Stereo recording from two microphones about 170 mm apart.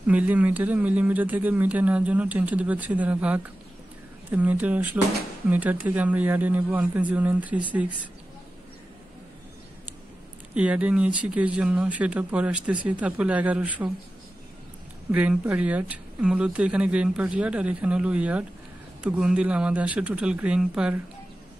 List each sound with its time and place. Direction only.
0.0 s speech: 10° right (ahead or behind)
10.5 s speech: 5° right (ahead or behind)
15.0 s speech: 10° right (ahead or behind)